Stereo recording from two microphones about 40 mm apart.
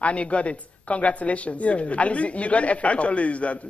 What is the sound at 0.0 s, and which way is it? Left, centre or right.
A man's voice, left.